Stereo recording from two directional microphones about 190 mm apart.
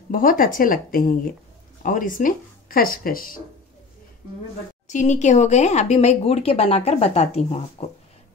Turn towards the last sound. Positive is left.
turn(degrees=35)  # may be behind; listen again after turning